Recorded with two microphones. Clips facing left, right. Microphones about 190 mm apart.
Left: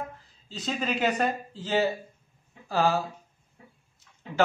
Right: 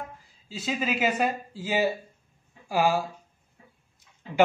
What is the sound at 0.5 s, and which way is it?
A man's voice, 5° right (ahead or behind).